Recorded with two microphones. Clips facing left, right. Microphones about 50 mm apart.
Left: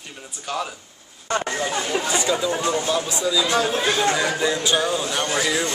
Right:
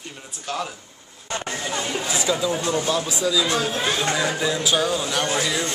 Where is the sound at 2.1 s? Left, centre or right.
Centre.